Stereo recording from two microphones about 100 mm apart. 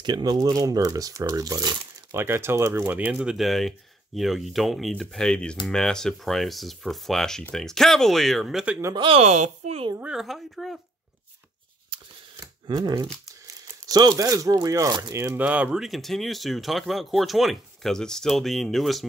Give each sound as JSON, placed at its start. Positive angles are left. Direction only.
{"t": 0.0, "sound": "speech", "side_deg": -45}
{"t": 2.1, "sound": "speech", "side_deg": -25}
{"t": 8.9, "sound": "speech", "side_deg": -65}
{"t": 10.0, "sound": "speech", "side_deg": -5}
{"t": 12.6, "sound": "speech", "side_deg": -45}
{"t": 15.3, "sound": "speech", "side_deg": -15}